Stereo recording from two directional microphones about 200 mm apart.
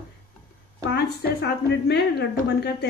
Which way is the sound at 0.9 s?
55° left (ahead or behind).